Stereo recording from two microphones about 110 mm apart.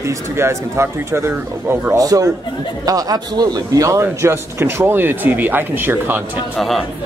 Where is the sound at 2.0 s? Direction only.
35° right (ahead or behind); by 6.2 s 20° right (ahead or behind).